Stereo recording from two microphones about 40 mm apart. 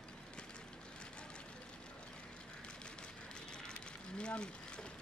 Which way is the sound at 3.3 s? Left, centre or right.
Left.